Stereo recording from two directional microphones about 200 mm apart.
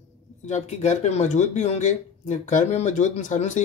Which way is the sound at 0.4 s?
35° left (ahead or behind).